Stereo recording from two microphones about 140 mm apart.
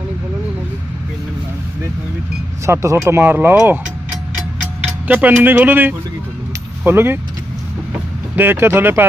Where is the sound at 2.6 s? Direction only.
20° right (ahead or behind).